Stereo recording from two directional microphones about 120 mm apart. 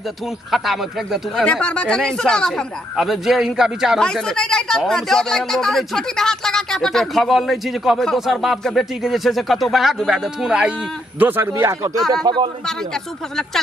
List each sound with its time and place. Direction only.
0.5 s speech: centre (ahead or behind)
11.1 s speech: 15° right (ahead or behind)
12.3 s speech: 35° right (ahead or behind)